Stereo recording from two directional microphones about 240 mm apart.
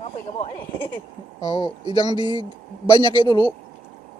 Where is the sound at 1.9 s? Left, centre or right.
Centre.